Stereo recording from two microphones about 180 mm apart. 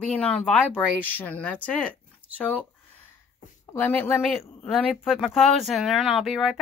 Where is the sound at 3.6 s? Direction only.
15° left (ahead or behind).